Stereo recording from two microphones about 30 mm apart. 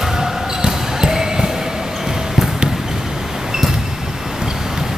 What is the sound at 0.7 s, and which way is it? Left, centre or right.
Basketball bounce, centre.